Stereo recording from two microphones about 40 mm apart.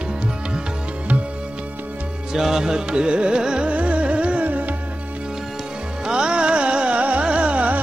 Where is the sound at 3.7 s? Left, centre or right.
Right.